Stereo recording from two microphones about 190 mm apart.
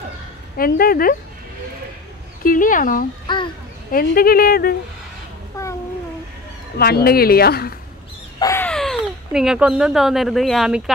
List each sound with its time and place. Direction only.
0.6 s speech: 50° left (ahead or behind)
2.4 s speech: 45° left (ahead or behind)
3.3 s a child's voice: 25° left (ahead or behind)
3.9 s speech: 50° left (ahead or behind)
5.5 s babbling: 15° left (ahead or behind)
6.8 s speech: 55° left (ahead or behind)
8.4 s a sound: 15° left (ahead or behind)
8.6 s speech: 5° left (ahead or behind)